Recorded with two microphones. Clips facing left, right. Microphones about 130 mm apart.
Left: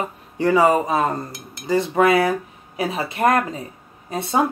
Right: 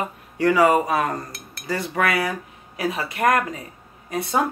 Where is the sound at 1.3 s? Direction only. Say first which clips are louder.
Left 7 dB; 20° left (ahead or behind).